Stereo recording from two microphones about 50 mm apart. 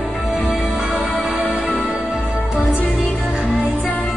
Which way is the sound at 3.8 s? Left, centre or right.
Left.